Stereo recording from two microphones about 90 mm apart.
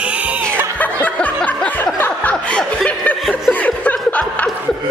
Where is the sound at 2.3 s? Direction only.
10° left (ahead or behind).